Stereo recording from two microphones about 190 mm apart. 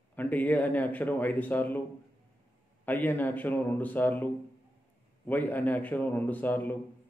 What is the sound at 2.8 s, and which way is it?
A man's voice, 10° left (ahead or behind).